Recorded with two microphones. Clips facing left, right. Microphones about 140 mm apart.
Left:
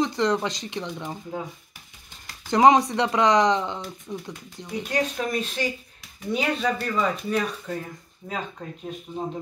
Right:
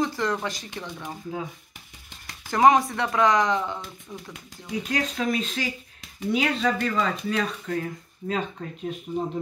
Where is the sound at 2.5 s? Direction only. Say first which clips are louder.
Left 2 dB; 20° left (ahead or behind).